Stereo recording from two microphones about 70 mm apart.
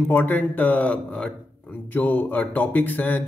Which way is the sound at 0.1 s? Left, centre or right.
Left.